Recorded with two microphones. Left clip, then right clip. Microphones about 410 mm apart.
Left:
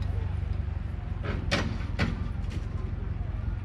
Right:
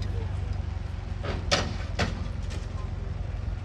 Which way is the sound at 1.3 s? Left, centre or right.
Right.